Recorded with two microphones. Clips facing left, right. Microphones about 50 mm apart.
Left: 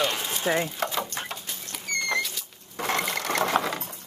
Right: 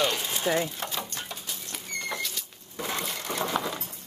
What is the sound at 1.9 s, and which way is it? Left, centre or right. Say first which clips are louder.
Rodents: left 6 dB; left.